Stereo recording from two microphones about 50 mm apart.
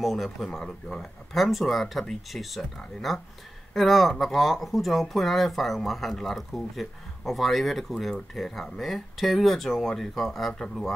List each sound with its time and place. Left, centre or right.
0.0 s speech: centre
1.3 s speech: centre